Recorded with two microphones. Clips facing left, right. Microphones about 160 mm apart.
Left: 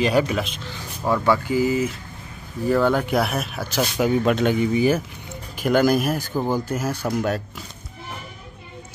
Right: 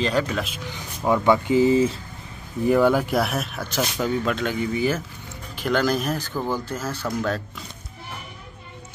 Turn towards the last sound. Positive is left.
turn(degrees=10)  # may be behind; listen again after turning